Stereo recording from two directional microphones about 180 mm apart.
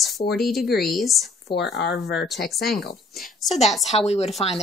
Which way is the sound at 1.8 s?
65° left (ahead or behind).